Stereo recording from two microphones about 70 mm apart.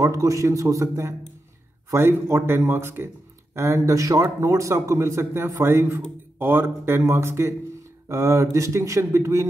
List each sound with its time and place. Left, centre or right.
0.0 s a man's voice: right